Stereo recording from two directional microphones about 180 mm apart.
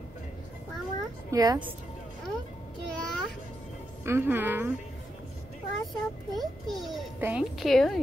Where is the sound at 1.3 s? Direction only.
20° right (ahead or behind).